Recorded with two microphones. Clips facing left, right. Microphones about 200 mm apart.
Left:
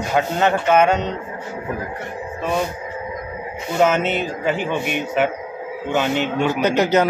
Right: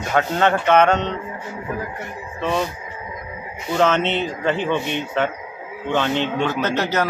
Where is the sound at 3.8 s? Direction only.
10° left (ahead or behind).